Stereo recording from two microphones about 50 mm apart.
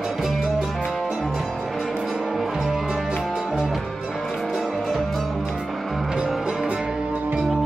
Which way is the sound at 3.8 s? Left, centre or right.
Centre.